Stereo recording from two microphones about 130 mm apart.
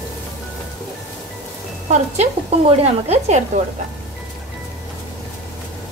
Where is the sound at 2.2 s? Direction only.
55° right (ahead or behind).